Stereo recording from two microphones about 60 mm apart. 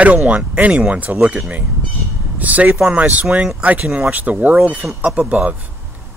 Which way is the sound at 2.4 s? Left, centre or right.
Right.